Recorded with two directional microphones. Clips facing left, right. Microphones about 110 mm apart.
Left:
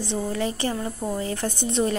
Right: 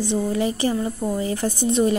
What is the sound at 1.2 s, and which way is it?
Speech, 15° right (ahead or behind).